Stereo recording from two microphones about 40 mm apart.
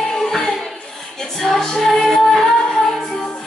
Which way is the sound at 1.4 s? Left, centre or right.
Centre.